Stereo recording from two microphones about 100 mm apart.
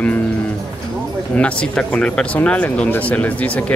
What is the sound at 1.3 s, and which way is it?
Speech, 15° left (ahead or behind).